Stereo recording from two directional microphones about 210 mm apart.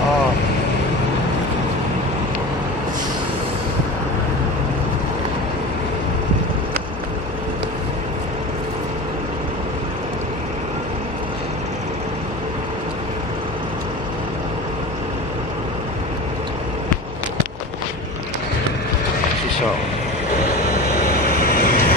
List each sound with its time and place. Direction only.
21.1 s train: 45° left (ahead or behind)